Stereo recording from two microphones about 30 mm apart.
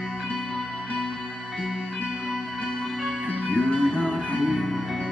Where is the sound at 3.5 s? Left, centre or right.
Left.